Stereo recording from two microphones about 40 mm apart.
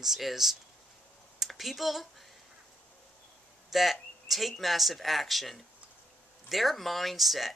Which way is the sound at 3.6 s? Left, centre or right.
Centre.